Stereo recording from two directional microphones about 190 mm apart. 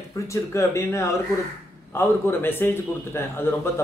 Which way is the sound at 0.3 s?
15° left (ahead or behind).